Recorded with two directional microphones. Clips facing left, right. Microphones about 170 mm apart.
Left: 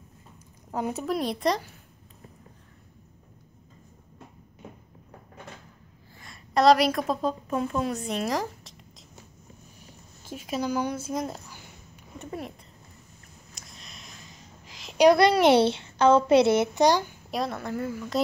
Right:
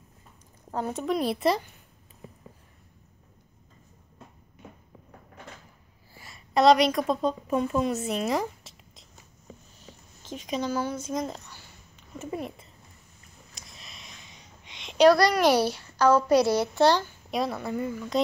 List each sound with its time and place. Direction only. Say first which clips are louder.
0.7 s speech: left 1 dB; 10° left (ahead or behind)
1.0 s speech: right 3 dB; centre (ahead or behind)
6.1 s a woman's voice: even; 5° right (ahead or behind)
9.8 s a sound: even; 10° left (ahead or behind)
12.2 s speech: right 3 dB; centre (ahead or behind)
13.6 s a sound: even; centre (ahead or behind)
15.0 s a child's voice: left 2 dB; 25° left (ahead or behind)
17.3 s speech: right 2 dB; centre (ahead or behind)